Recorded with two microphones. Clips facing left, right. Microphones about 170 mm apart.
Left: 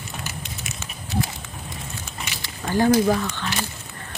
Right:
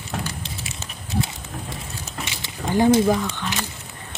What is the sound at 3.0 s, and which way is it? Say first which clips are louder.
Speech: right 1 dB; 5° right (ahead or behind).